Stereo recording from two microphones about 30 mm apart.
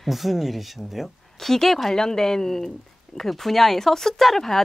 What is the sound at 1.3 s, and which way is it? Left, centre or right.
Speech, centre.